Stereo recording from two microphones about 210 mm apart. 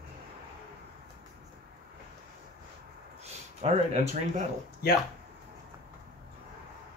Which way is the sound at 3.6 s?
30° right (ahead or behind).